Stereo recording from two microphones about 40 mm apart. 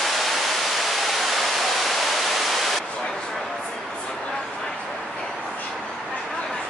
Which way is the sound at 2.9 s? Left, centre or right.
Centre.